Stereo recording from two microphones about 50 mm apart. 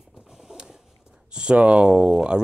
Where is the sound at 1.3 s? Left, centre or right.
Right.